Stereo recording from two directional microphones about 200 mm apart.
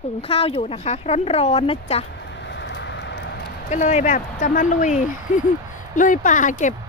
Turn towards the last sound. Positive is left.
turn(degrees=40)  # may be behind; listen again after turning